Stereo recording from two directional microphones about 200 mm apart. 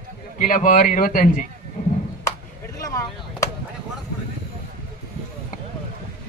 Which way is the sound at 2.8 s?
15° left (ahead or behind).